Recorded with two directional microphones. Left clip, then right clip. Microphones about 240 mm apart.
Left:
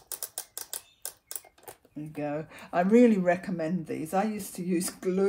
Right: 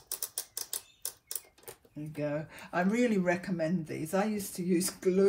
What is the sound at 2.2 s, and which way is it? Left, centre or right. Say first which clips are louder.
Speech: left 1 dB; left.